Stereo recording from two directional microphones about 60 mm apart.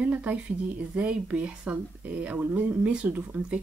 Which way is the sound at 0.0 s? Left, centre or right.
Right.